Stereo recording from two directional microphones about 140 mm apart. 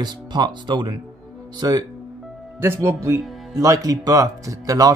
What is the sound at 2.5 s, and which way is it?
Speech, 15° right (ahead or behind).